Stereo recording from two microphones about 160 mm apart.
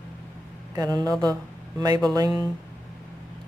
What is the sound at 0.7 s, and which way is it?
Speech, 25° right (ahead or behind).